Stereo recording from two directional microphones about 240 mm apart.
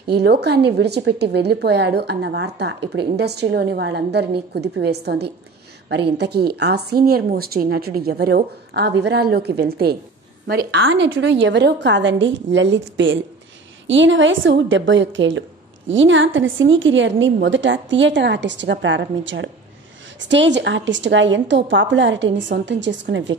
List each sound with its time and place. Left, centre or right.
0.0 s a woman's voice: right
10.8 s a woman's voice: right